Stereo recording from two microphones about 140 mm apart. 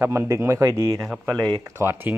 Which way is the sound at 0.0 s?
20° right (ahead or behind).